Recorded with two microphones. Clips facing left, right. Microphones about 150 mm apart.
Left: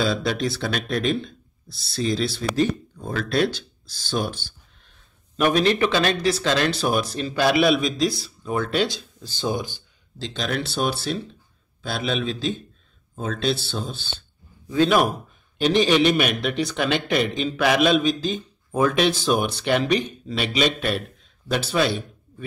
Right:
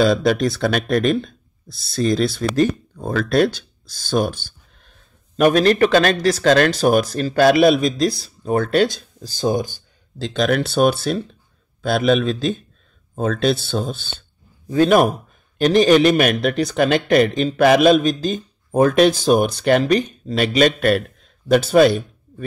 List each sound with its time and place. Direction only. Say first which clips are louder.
0.0 s a man's voice: right 7 dB; 50° right (ahead or behind)